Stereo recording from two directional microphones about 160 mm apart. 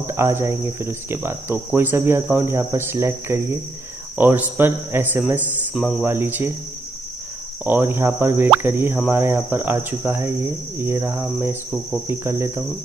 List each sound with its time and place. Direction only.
0.0 s speech: 15° right (ahead or behind)
6.0 s speech: 15° right (ahead or behind)
7.6 s speech: 15° right (ahead or behind)